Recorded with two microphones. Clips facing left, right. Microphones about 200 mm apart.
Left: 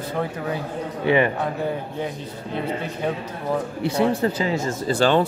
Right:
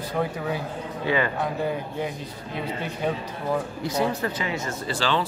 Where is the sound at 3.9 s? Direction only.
30° left (ahead or behind).